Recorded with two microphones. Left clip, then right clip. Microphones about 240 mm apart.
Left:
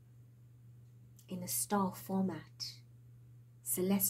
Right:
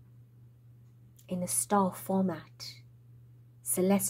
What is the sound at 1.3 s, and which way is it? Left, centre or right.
A woman's voice, right.